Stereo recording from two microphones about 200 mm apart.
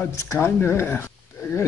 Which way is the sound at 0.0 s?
15° left (ahead or behind).